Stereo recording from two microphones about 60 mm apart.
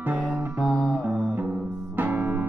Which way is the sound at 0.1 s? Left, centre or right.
Right.